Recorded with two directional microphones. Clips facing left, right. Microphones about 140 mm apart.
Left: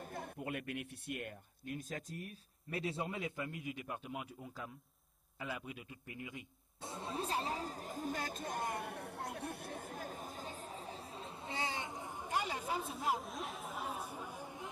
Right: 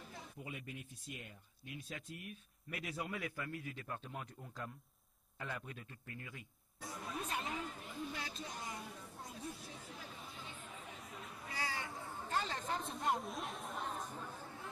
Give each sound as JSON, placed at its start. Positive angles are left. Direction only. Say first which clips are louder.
{"t": 0.0, "sound": "speech", "louder": "left 7 dB", "side_deg": 55}